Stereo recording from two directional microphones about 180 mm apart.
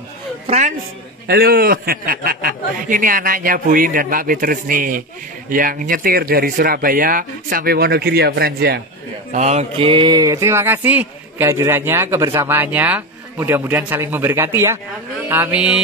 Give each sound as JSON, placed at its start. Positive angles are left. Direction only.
{"t": 0.5, "sound": "a man's voice", "side_deg": -45}
{"t": 1.2, "sound": "a man's voice", "side_deg": -60}
{"t": 9.3, "sound": "speech", "side_deg": -40}